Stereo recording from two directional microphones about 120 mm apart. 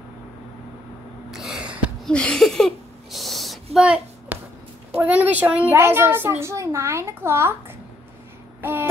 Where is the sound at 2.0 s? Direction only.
10° left (ahead or behind); by 4.4 s 10° right (ahead or behind).